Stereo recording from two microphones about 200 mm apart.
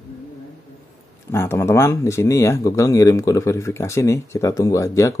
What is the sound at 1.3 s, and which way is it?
Speech, 15° left (ahead or behind).